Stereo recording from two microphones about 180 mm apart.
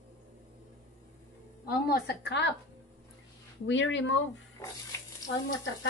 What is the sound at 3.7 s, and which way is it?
Speech, 90° left.